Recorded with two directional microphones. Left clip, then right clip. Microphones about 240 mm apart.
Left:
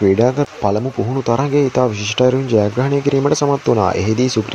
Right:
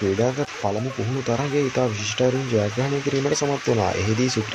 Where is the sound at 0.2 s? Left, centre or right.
Left.